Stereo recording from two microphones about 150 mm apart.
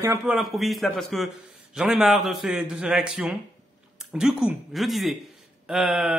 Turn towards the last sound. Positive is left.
turn(degrees=-5)  # may be behind; listen again after turning